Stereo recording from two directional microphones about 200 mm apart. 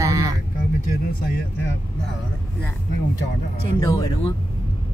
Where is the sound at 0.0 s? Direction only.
15° right (ahead or behind).